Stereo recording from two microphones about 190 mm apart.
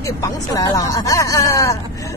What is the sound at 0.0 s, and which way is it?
Speech, 15° left (ahead or behind).